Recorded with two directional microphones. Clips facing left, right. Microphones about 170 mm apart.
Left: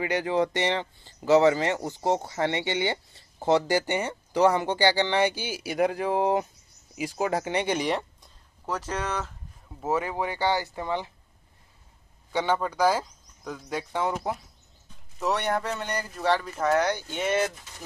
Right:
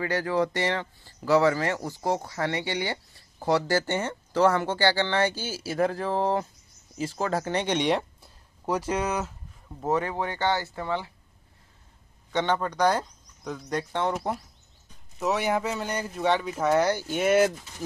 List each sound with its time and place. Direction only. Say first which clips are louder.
0.0 s speech: left 1 dB; 20° left (ahead or behind); by 8.3 s centre (ahead or behind)
8.6 s speech: right 4 dB; 10° right (ahead or behind)
9.8 s speech: right 1 dB; 10° left (ahead or behind)
12.3 s speech: even; 10° left (ahead or behind); by 17.5 s 10° right (ahead or behind)